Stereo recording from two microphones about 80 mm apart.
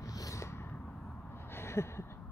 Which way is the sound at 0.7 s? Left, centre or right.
Centre.